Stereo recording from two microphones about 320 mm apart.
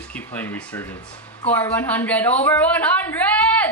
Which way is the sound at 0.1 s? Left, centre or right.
Centre.